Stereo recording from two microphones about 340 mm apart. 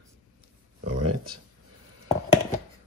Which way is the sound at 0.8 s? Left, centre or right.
Right.